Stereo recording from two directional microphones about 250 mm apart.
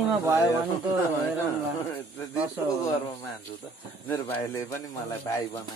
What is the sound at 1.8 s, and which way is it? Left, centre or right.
Speech, centre.